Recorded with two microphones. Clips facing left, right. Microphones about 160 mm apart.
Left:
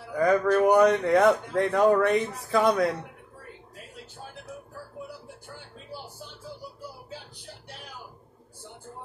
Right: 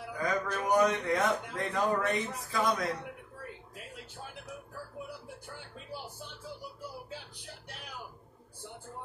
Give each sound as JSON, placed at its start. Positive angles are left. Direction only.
{"t": 0.2, "sound": "a man's voice", "side_deg": 65}